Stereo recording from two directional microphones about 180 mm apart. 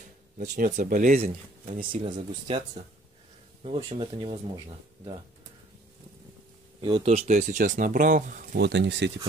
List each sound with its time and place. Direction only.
0.4 s speech: 45° right (ahead or behind)
1.9 s speech: 25° right (ahead or behind)
6.8 s speech: 30° right (ahead or behind)
7.2 s speech: 40° right (ahead or behind); by 9.1 s 75° right (ahead or behind)